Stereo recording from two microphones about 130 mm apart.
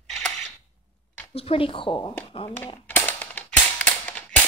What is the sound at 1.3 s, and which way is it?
Speech, 50° left (ahead or behind).